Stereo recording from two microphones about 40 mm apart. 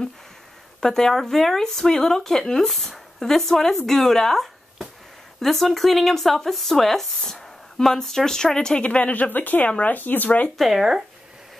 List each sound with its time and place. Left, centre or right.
0.7 s speech: centre
8.8 s speech: left
10.6 s speech: centre